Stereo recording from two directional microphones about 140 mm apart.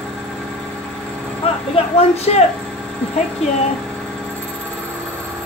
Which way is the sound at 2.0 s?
50° left (ahead or behind).